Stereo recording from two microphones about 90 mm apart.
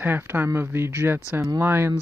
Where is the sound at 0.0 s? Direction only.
25° right (ahead or behind).